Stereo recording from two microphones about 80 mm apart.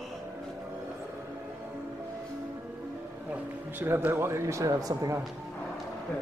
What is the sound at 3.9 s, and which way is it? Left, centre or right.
A man's voice, right.